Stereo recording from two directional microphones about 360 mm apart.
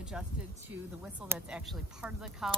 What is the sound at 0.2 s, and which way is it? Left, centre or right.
Speech, centre.